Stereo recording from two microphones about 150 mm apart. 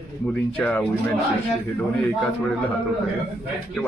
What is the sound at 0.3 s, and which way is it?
Speech, 10° left (ahead or behind).